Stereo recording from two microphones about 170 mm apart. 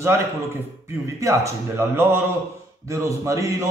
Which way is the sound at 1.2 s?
15° right (ahead or behind).